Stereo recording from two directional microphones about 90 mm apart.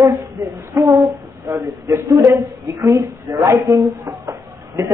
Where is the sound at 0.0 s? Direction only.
45° right (ahead or behind).